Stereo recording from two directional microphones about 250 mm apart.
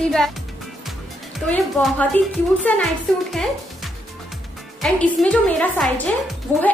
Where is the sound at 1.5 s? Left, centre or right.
Centre.